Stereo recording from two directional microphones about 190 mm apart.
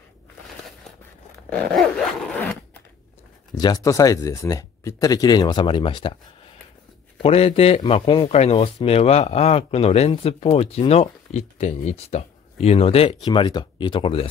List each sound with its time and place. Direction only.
1.5 s dog: 5° left (ahead or behind)
3.5 s speech: 20° left (ahead or behind)
7.2 s speech: 30° left (ahead or behind)